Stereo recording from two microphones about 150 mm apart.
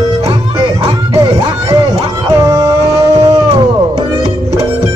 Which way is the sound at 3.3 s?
40° right (ahead or behind).